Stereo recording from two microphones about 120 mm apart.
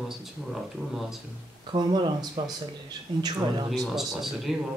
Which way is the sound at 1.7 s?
40° right (ahead or behind).